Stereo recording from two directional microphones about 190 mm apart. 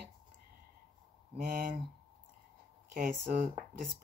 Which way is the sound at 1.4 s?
45° right (ahead or behind).